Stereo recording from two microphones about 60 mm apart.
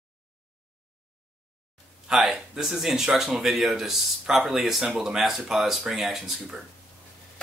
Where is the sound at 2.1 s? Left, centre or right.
Centre.